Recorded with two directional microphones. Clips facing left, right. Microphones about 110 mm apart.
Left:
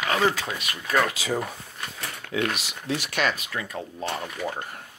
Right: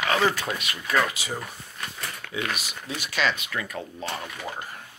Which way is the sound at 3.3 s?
30° left (ahead or behind).